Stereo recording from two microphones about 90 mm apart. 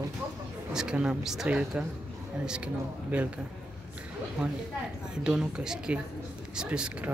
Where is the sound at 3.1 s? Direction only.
15° right (ahead or behind).